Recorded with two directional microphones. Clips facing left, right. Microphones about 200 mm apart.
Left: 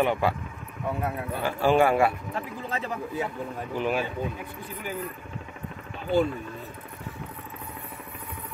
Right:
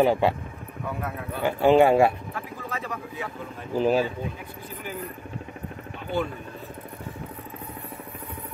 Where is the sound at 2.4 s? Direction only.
25° left (ahead or behind).